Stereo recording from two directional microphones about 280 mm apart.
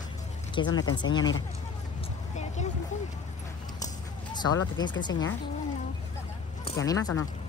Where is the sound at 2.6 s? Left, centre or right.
Left.